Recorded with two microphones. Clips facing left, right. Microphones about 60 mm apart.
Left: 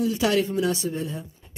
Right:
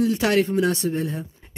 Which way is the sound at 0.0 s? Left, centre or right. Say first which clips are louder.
Right 3 dB; right.